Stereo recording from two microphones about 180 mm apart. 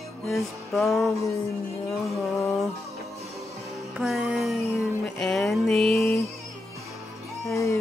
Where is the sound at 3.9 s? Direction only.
5° right (ahead or behind).